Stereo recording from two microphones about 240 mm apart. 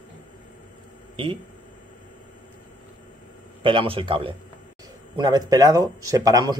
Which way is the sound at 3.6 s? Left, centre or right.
Right.